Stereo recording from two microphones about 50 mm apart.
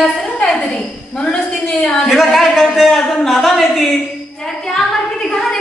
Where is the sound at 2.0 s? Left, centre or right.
Centre.